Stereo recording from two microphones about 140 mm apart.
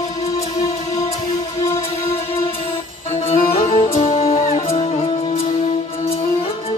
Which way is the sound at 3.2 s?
50° left (ahead or behind).